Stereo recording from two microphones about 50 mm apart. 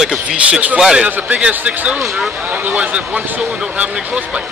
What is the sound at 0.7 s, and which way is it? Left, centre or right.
Speech, centre.